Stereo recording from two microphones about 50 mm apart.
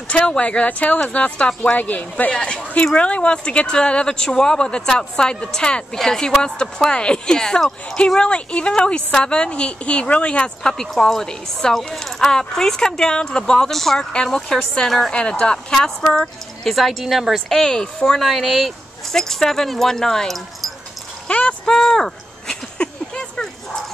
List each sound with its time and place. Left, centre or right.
0.1 s a woman's voice: left
2.3 s a woman's voice: centre
15.1 s a woman's voice: centre
16.6 s speech: centre
17.6 s speech: centre
19.1 s speech: centre
21.3 s a woman's voice: left
21.7 s a sound: centre